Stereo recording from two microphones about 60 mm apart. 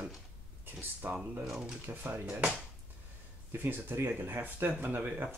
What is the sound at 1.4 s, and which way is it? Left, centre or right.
Speech, centre.